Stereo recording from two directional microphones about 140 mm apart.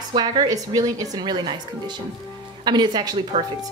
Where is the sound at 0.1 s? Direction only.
30° right (ahead or behind).